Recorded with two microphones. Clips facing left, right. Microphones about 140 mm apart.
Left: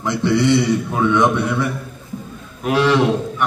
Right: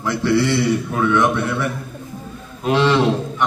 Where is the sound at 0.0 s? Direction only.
20° left (ahead or behind).